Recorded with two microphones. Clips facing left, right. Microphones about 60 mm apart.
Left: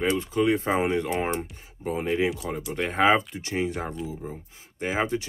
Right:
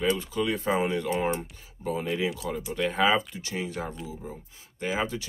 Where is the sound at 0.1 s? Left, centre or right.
Left.